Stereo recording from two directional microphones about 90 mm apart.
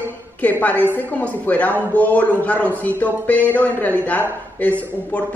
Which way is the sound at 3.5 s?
20° left (ahead or behind).